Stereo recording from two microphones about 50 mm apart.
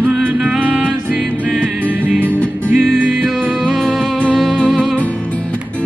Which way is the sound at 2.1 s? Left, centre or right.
Right.